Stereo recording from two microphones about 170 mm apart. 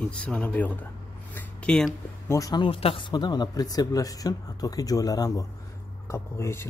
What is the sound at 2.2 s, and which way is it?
Speech, 20° left (ahead or behind).